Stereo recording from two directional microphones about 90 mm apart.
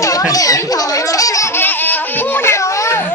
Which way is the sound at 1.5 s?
20° left (ahead or behind).